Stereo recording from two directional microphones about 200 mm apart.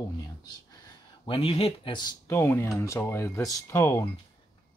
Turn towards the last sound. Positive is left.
turn(degrees=15)  # may be behind; listen again after turning